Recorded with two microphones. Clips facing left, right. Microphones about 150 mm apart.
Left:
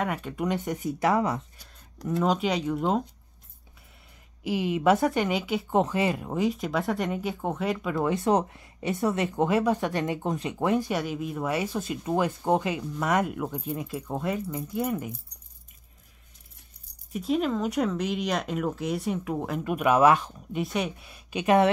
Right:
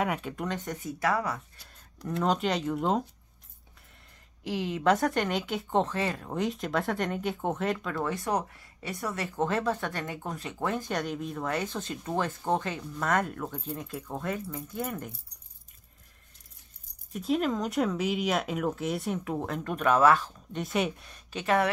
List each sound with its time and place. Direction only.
0.0 s speech: 5° right (ahead or behind)
0.5 s speech: 10° left (ahead or behind)
2.0 s speech: centre (ahead or behind)
4.5 s speech: 10° left (ahead or behind)
17.1 s speech: centre (ahead or behind); by 20.4 s 15° left (ahead or behind)
20.5 s speech: centre (ahead or behind); by 21.6 s 15° left (ahead or behind)